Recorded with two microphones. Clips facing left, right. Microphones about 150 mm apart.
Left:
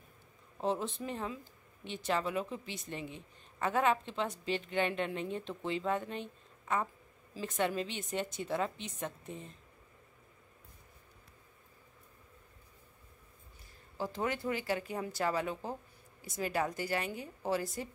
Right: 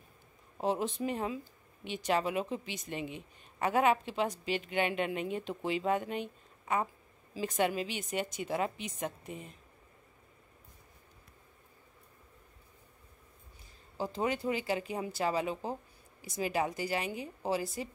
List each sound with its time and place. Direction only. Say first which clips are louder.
0.6 s a woman's voice: right 2 dB; 15° right (ahead or behind)
13.9 s a woman's voice: right 2 dB; 15° right (ahead or behind)